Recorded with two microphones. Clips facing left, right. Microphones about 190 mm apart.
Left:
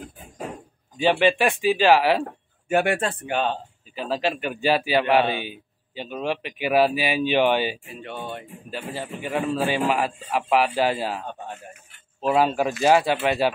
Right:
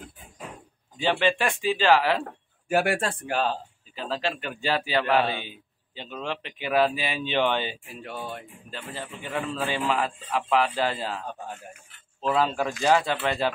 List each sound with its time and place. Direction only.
0.9 s speech: 20° left (ahead or behind)
2.7 s speech: centre (ahead or behind)
3.9 s speech: 15° left (ahead or behind)
7.8 s speech: centre (ahead or behind)
8.6 s speech: 10° left (ahead or behind)